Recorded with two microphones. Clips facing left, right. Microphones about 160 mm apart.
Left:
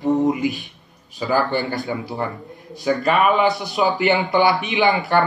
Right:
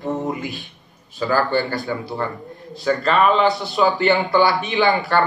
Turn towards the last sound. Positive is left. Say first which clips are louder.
# even
turn(degrees=20)  # may be behind; listen again after turning